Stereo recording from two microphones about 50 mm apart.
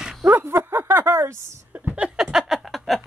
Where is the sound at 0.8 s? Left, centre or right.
Right.